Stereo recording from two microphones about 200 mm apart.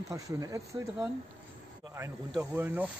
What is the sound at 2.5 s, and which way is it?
Speech, 10° right (ahead or behind).